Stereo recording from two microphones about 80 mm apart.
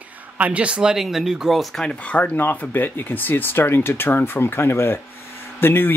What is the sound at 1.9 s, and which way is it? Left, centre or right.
Speech, centre.